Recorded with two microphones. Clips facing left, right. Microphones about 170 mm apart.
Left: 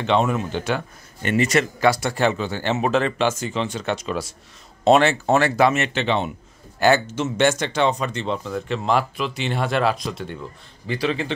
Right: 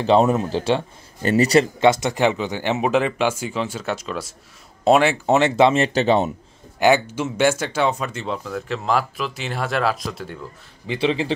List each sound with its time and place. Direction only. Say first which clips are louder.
0.0 s a man's voice: right 4 dB; 35° right (ahead or behind)
6.8 s speech: right 1 dB; 15° right (ahead or behind)
10.9 s speech: right 3 dB; 25° right (ahead or behind)